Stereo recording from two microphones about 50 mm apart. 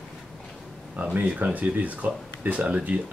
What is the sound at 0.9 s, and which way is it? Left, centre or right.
Speech, right.